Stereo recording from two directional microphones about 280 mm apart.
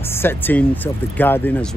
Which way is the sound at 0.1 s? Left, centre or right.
Centre.